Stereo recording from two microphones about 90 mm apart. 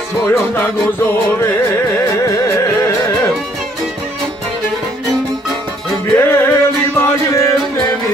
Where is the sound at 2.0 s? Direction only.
30° left (ahead or behind).